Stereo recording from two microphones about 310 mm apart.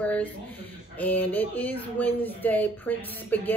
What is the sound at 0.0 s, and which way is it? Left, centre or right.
A woman's voice, centre.